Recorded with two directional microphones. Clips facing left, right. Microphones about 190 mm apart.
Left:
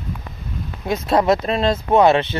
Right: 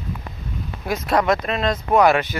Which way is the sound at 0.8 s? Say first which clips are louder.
Left 3 dB; 25° left (ahead or behind).